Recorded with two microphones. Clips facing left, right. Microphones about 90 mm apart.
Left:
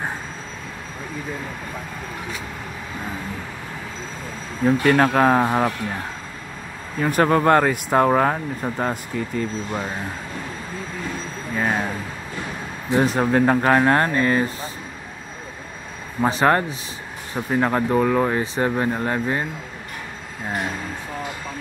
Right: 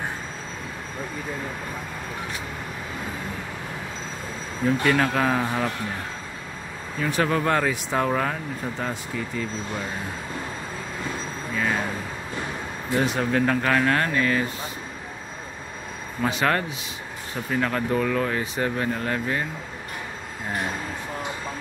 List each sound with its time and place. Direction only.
4.8 s speech: 45° left (ahead or behind)
7.0 s speech: 45° left (ahead or behind)
11.5 s a sound: 40° left (ahead or behind)
13.0 s speech: 40° left (ahead or behind)
16.2 s speech: 35° left (ahead or behind)